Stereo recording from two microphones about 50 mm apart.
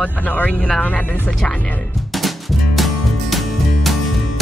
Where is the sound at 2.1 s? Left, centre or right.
Centre.